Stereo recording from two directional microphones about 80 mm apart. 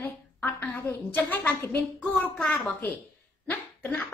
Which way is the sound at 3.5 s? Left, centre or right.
Left.